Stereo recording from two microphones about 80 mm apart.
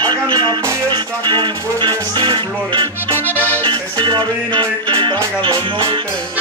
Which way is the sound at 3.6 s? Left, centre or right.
Right.